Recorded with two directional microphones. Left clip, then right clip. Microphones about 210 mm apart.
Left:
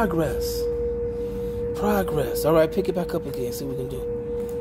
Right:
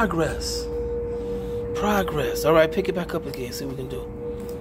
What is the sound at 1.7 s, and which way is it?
A man's voice, 10° left (ahead or behind).